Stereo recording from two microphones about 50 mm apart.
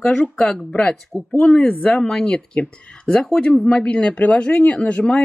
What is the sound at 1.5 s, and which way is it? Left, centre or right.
Speech, centre.